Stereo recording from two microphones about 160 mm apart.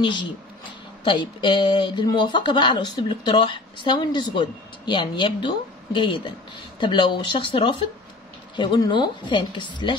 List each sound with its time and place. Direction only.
1.0 s speech: 30° left (ahead or behind)